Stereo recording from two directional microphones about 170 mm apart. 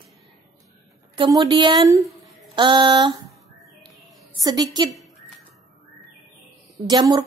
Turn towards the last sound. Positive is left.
turn(degrees=-25)  # may be behind; listen again after turning